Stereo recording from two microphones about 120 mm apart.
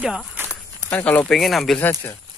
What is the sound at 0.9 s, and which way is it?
Speech, 15° left (ahead or behind).